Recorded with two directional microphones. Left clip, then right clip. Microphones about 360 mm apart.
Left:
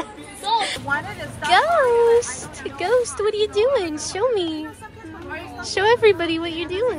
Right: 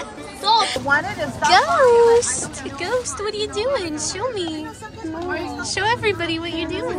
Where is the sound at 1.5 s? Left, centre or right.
Centre.